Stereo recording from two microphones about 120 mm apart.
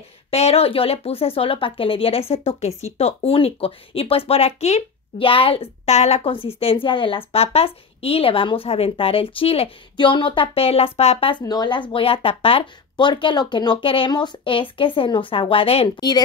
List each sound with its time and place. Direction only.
0.3 s speech: 60° left (ahead or behind)
5.2 s a woman's voice: 50° left (ahead or behind)
11.4 s speech: 35° left (ahead or behind)
11.9 s a woman's voice: 50° left (ahead or behind)